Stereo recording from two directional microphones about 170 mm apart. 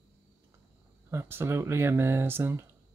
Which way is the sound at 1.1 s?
15° right (ahead or behind).